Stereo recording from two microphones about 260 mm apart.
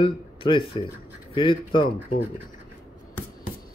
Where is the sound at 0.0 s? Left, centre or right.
Centre.